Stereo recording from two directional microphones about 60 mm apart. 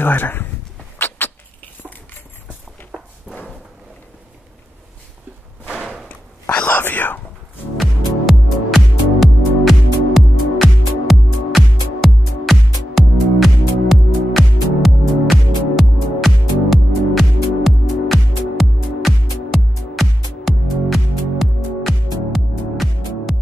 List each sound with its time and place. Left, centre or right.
0.0 s speech: left
0.9 s a sound: left
2.9 s walk: centre
5.8 s a sound: centre
6.5 s whispering: left
7.7 s music: centre